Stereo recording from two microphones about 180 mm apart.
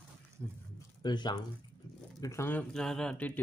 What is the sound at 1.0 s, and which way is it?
Speech, 25° left (ahead or behind).